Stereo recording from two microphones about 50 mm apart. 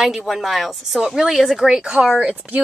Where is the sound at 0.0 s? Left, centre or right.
Centre.